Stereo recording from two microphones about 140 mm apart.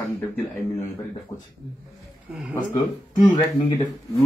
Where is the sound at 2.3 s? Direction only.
10° right (ahead or behind).